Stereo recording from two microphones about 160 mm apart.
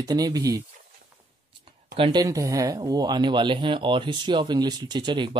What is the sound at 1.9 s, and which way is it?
Speech, 35° right (ahead or behind).